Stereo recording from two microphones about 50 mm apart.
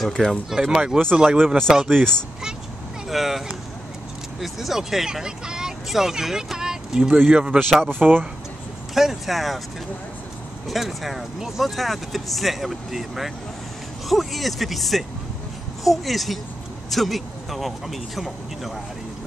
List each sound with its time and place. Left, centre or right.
0.0 s speech: centre
0.5 s speech: centre
1.7 s speech: centre
3.1 s vehicle: centre
4.4 s speech: centre; by 7.6 s right
7.9 s speech: right
8.9 s speech: centre
10.7 s speech: centre